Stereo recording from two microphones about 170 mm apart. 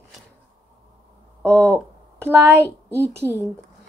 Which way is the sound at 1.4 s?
15° right (ahead or behind).